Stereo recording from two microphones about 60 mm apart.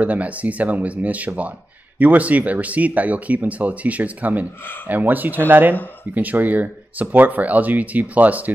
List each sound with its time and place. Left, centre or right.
0.0 s speech: right